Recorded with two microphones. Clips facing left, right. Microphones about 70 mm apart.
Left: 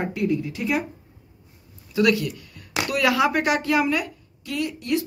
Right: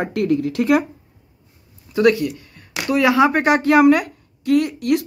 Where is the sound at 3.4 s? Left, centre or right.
Right.